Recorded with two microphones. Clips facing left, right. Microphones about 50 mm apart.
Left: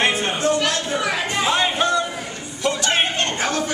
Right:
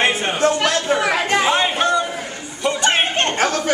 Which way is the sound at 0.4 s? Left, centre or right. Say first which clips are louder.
Right 5 dB; right.